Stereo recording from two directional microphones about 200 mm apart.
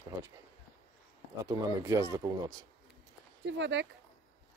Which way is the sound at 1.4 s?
15° right (ahead or behind).